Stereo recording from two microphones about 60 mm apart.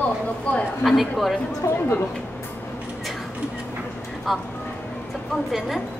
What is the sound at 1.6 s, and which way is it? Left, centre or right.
Speech, left.